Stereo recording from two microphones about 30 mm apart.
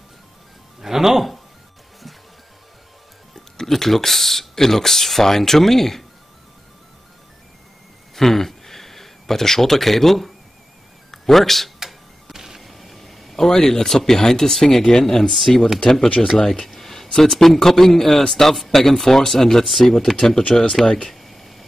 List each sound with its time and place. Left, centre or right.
0.7 s speech: centre
3.3 s music: centre
3.7 s speech: centre
8.2 s a man's voice: centre
11.8 s a sound: centre
13.4 s speech: centre
15.3 s speech: centre
16.2 s speech: left
16.6 s speech: centre
19.6 s speech: centre
21.1 s a sound: centre